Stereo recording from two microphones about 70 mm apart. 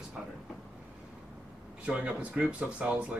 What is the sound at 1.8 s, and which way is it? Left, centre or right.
Speech, centre.